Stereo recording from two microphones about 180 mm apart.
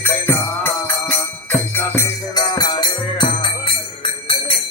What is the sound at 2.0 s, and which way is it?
Music, 25° left (ahead or behind).